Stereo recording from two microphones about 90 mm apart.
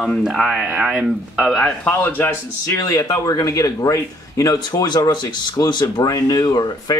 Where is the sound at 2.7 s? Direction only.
35° left (ahead or behind); by 6.0 s 55° left (ahead or behind).